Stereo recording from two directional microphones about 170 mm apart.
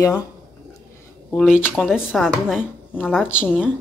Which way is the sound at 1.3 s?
5° left (ahead or behind).